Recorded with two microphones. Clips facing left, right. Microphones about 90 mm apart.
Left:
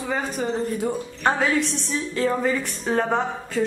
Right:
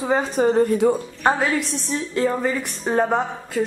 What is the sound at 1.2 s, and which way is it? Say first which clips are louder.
A woman's voice: right 1 dB; 5° right (ahead or behind).